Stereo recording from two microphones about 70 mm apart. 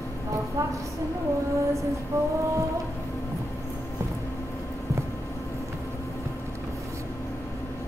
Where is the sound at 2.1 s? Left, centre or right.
Right.